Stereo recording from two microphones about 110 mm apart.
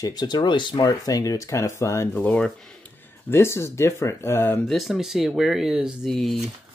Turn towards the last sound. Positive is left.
turn(degrees=0)  # may be behind; listen again after turning